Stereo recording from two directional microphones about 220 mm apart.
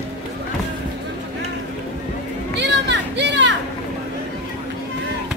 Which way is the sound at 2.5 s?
50° right (ahead or behind).